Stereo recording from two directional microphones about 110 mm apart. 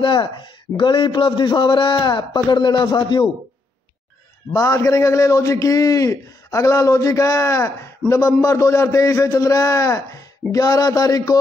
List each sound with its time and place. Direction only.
0.0 s a man's voice: 45° left (ahead or behind)
4.5 s a man's voice: 25° left (ahead or behind)